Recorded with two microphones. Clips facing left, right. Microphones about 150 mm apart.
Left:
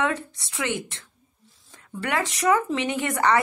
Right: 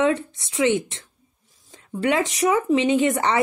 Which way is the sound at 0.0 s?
20° right (ahead or behind).